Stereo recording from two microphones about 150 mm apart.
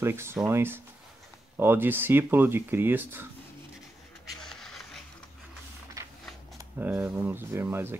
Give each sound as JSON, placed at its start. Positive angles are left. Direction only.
{"t": 0.0, "sound": "speech", "side_deg": -15}
{"t": 4.3, "sound": "a sound", "side_deg": 0}
{"t": 6.6, "sound": "speech", "side_deg": -10}